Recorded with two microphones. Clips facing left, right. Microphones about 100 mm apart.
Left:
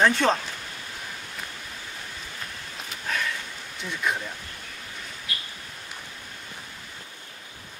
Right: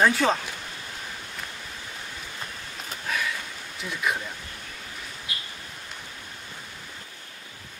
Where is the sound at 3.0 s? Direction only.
5° right (ahead or behind).